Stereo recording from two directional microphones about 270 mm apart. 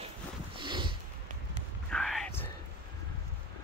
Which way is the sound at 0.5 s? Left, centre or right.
Centre.